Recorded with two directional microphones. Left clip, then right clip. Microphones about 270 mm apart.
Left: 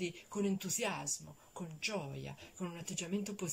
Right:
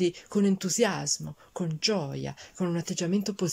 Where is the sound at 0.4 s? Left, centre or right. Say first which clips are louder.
Right 12 dB; right.